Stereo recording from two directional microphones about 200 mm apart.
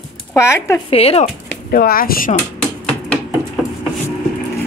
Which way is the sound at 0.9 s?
30° left (ahead or behind).